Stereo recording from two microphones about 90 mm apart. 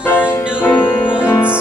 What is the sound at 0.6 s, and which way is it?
Music, 20° left (ahead or behind).